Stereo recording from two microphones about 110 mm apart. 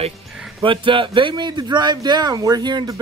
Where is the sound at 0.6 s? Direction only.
50° right (ahead or behind).